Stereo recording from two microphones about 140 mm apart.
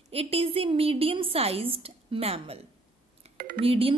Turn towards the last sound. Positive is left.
turn(degrees=-40)  # may be behind; listen again after turning